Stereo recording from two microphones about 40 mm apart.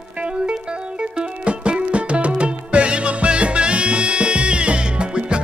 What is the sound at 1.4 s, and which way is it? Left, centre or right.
Music, right.